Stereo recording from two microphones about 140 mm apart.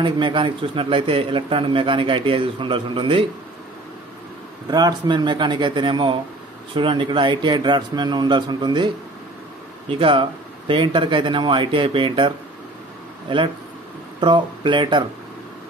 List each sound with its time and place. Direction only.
0.0 s a man's voice: 35° right (ahead or behind)
4.6 s a man's voice: 30° right (ahead or behind)
14.2 s a man's voice: 35° right (ahead or behind)